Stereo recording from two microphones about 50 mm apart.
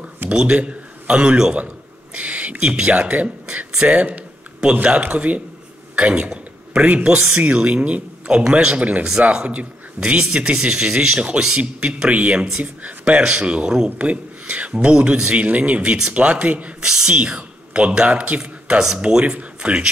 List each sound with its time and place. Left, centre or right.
0.3 s a man's voice: centre
5.9 s a sound: right
6.9 s a man's voice: right
16.8 s a man's voice: centre